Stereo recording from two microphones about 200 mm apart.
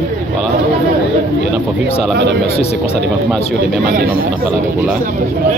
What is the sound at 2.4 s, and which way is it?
Speech, 30° left (ahead or behind).